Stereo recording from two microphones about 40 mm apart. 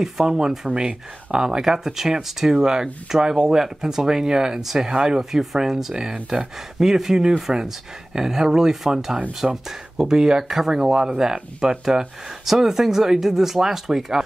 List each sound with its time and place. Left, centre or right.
0.0 s speech: centre